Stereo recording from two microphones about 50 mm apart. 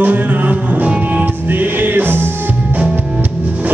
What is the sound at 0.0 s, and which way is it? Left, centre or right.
Music, right.